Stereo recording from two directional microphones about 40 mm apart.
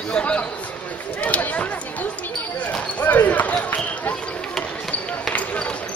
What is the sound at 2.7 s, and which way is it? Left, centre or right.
Basketball bounce, left.